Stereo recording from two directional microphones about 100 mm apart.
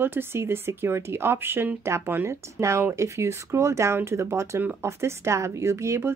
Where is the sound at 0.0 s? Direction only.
20° right (ahead or behind).